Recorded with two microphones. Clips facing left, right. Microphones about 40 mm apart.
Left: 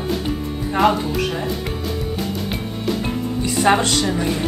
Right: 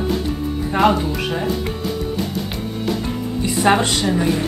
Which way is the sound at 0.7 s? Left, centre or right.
Centre.